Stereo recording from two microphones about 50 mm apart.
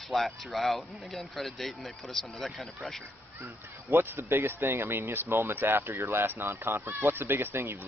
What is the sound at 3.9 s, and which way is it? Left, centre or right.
Speech, right.